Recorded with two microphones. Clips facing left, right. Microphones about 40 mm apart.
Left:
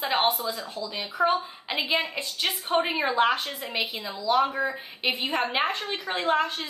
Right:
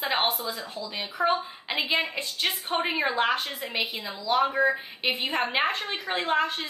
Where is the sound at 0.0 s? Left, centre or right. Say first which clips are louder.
Left 2 dB; centre.